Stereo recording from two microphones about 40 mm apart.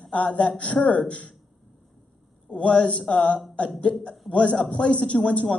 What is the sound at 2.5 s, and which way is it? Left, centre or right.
Speech, left.